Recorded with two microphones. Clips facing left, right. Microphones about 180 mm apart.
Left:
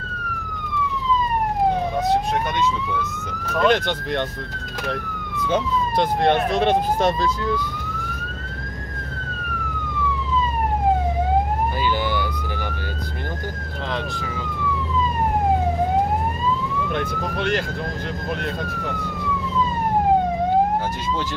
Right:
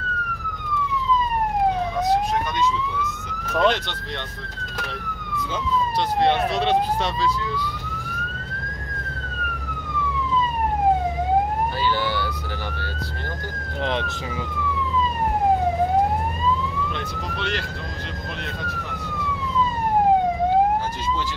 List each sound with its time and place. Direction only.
3.6 s speech: 50° left (ahead or behind)
5.5 s speech: 50° left (ahead or behind)
12.0 s emergency vehicle: 15° left (ahead or behind)
16.9 s speech: 50° left (ahead or behind)